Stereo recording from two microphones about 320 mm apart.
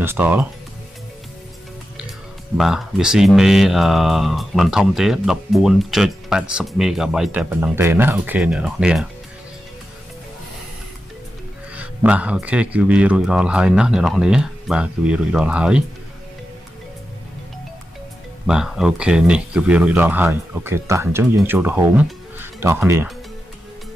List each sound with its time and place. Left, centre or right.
0.0 s speech: centre
2.5 s speech: centre
11.7 s speech: centre
18.5 s speech: centre